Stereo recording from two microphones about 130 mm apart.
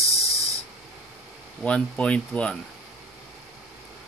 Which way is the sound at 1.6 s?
10° left (ahead or behind).